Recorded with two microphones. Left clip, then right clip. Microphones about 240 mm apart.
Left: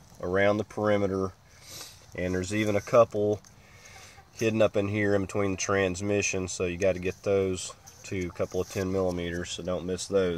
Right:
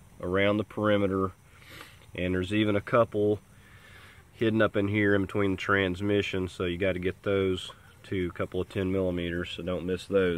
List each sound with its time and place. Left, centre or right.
0.2 s speech: centre
4.4 s speech: centre